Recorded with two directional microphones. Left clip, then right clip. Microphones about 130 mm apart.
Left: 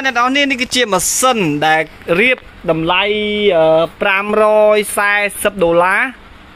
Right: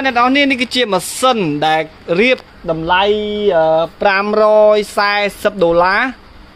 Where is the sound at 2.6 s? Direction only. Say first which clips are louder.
Even; centre (ahead or behind).